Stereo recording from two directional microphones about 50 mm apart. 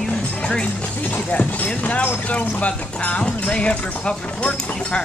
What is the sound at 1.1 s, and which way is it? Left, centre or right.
Speech, left.